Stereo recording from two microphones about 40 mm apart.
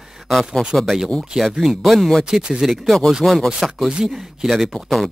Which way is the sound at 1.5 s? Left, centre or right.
Centre.